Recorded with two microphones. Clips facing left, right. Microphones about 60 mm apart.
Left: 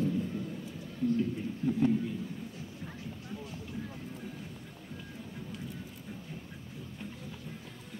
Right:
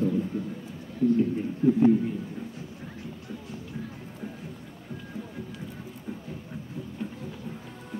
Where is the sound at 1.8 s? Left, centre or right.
Right.